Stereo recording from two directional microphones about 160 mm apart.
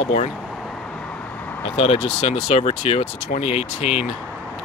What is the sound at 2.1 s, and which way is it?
Speech, 40° left (ahead or behind).